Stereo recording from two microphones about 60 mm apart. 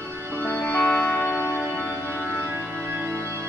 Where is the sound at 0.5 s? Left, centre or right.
Left.